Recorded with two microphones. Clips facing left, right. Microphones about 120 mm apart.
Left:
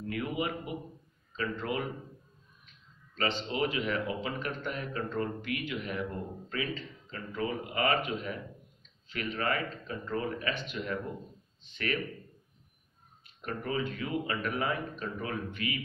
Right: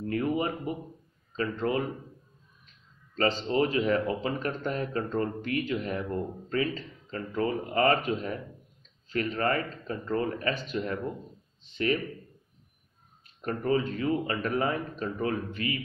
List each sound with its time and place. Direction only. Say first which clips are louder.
0.0 s speech: right 5 dB; 40° right (ahead or behind)
3.2 s speech: right 6 dB; 40° right (ahead or behind)
11.7 s speech: right 6 dB; 30° right (ahead or behind)
13.4 s speech: right 6 dB; 40° right (ahead or behind)